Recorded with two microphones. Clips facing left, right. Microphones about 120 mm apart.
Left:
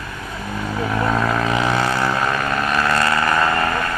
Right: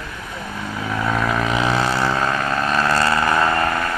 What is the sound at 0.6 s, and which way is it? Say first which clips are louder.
Vehicle: left 3 dB; 5° left (ahead or behind).